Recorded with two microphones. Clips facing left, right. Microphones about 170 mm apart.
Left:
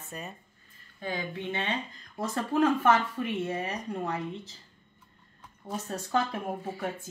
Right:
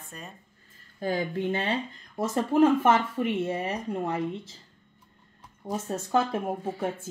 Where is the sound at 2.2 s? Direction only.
25° right (ahead or behind).